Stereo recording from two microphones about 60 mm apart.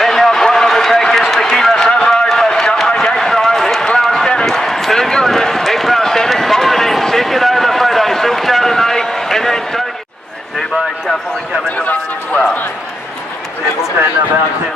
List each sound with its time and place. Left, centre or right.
0.0 s run: centre
4.5 s basketball bounce: centre
11.7 s a sound: left